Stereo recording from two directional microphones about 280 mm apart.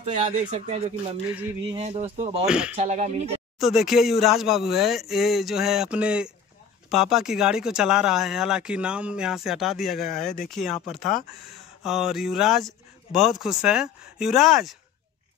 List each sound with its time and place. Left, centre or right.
0.6 s speech: right
1.3 s speech: centre
1.8 s speech: right
2.4 s speech: centre
2.8 s speech: right
3.5 s speech: centre